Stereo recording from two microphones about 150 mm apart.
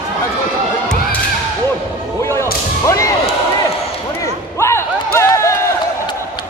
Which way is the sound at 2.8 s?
20° left (ahead or behind).